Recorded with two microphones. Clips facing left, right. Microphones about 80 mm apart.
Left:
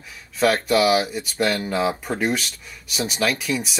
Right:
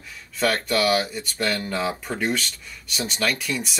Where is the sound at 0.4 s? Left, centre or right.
Centre.